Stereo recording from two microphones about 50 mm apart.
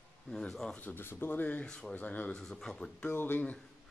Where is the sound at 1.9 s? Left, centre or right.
Left.